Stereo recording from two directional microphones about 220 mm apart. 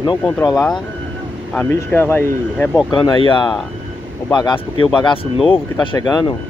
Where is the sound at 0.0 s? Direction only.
20° left (ahead or behind).